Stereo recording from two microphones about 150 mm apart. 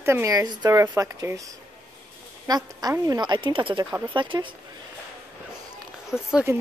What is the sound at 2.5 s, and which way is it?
A woman's voice, 25° right (ahead or behind).